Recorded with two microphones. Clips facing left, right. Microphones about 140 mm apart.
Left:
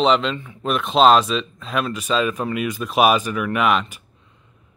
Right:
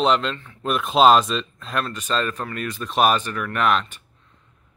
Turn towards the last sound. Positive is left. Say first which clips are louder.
# left 2 dB
turn(degrees=5)  # may be behind; listen again after turning